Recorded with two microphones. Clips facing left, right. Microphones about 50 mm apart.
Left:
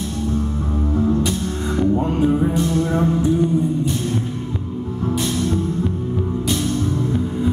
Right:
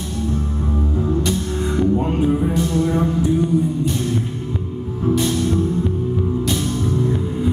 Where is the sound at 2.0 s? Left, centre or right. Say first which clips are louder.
Even; centre.